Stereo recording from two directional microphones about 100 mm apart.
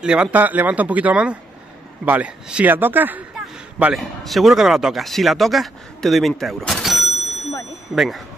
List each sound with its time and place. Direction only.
0.0 s a man's voice: 10° right (ahead or behind)
3.9 s speech: centre (ahead or behind)